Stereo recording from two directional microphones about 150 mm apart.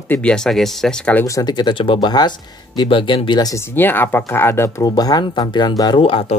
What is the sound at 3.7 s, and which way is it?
Speech, 15° left (ahead or behind).